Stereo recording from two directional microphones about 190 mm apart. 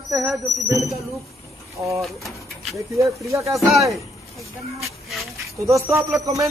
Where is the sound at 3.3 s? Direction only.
15° right (ahead or behind).